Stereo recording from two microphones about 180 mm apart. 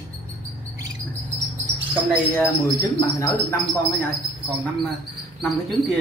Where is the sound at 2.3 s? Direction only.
15° left (ahead or behind).